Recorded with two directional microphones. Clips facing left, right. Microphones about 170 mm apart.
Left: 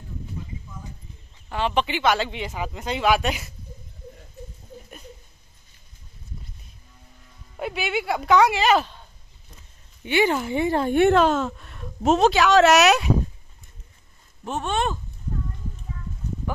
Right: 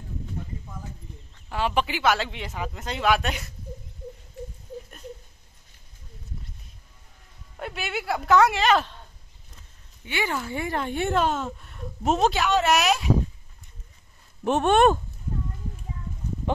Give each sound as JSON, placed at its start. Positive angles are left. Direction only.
{"t": 1.5, "sound": "speech", "side_deg": -5}
{"t": 7.5, "sound": "speech", "side_deg": 5}
{"t": 10.0, "sound": "speech", "side_deg": 20}
{"t": 10.9, "sound": "a woman's voice", "side_deg": 70}
{"t": 14.4, "sound": "speech", "side_deg": -60}